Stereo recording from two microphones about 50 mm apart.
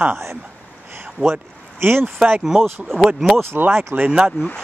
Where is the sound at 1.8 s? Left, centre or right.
Right.